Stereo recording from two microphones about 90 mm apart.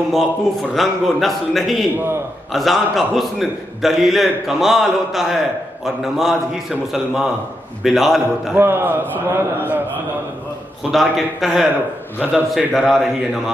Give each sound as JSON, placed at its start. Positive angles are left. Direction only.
{"t": 0.1, "sound": "a man's voice", "side_deg": 0}
{"t": 7.8, "sound": "a man's voice", "side_deg": 0}
{"t": 8.5, "sound": "a man's voice", "side_deg": -25}
{"t": 10.8, "sound": "a man's voice", "side_deg": 0}